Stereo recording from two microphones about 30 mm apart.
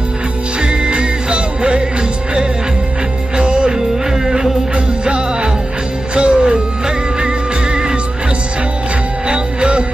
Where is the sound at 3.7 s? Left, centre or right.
Centre.